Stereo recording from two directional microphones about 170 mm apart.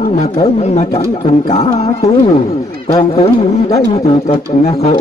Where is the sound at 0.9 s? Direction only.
30° left (ahead or behind).